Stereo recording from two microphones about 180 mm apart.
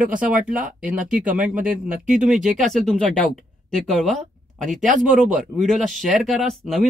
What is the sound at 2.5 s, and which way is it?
Speech, centre (ahead or behind).